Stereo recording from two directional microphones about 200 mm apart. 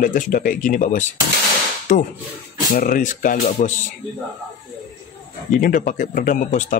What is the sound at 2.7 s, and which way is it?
Speech, 45° left (ahead or behind).